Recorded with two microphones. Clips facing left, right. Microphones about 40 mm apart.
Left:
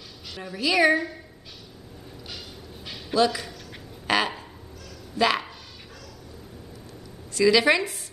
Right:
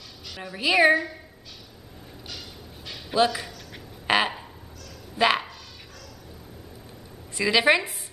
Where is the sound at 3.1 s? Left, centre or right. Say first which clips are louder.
Even; right.